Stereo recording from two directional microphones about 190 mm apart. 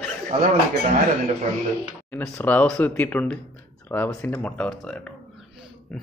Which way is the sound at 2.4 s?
10° left (ahead or behind).